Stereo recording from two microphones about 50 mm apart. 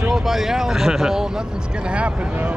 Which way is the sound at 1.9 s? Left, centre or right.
Right.